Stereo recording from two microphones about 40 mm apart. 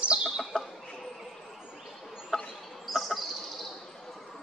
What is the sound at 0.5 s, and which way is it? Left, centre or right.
Chicken, centre.